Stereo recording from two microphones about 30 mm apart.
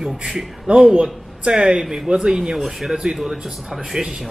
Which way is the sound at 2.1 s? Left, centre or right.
Right.